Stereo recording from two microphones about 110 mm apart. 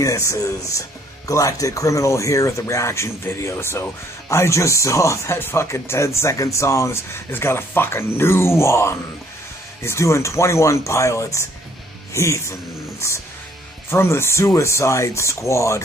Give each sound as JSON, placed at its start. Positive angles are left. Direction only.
{"t": 0.0, "sound": "speech", "side_deg": 30}